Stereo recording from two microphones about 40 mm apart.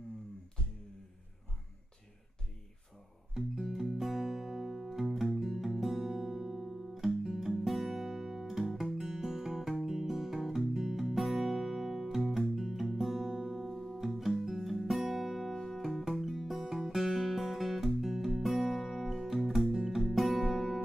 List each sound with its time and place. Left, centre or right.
3.4 s music: centre
13.9 s guitar: centre
15.5 s music: centre
15.8 s music: centre